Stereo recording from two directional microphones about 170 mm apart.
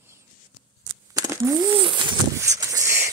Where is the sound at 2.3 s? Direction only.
20° right (ahead or behind).